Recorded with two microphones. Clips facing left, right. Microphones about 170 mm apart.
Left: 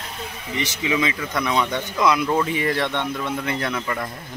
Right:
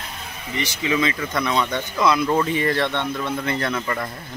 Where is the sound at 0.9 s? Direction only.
10° left (ahead or behind).